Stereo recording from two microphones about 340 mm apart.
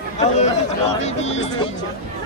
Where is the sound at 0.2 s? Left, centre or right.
Centre.